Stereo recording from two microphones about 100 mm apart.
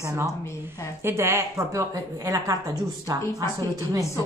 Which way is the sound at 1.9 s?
40° right (ahead or behind).